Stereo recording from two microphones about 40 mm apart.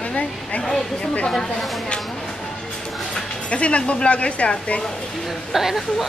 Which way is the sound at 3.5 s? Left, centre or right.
Left.